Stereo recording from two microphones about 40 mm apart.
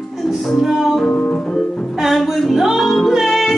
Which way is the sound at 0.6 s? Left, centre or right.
Centre.